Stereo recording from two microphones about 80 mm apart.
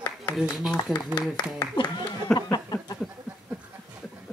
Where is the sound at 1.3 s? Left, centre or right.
Left.